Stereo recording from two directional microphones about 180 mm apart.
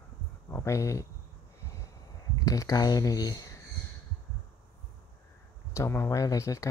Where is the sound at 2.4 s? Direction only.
20° left (ahead or behind).